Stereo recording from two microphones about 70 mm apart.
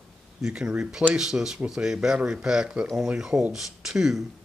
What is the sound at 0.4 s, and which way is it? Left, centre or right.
Speech, centre.